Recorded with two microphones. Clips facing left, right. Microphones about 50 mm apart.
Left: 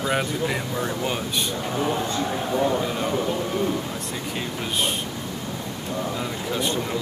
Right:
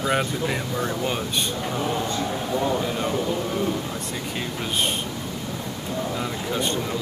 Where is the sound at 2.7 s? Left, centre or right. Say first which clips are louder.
Even; centre.